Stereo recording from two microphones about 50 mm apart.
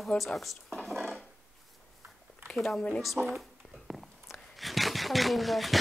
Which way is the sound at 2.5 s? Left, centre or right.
Centre.